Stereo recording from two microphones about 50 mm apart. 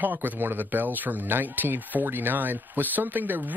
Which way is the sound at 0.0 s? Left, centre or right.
Right.